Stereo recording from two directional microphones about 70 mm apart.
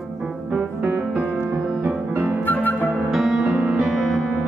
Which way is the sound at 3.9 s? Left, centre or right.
Centre.